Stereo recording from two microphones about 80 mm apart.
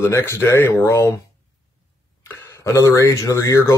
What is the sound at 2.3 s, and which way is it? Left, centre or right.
Speech, left.